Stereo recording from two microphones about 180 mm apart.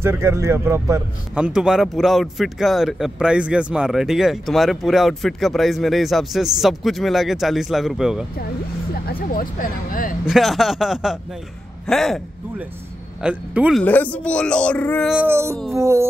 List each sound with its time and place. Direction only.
0.0 s speech: 15° right (ahead or behind)
9.3 s speech: 50° left (ahead or behind)
10.2 s speech: centre (ahead or behind)
13.2 s speech: 5° right (ahead or behind)
13.8 s speech: 10° left (ahead or behind)
15.0 s speech: 10° right (ahead or behind)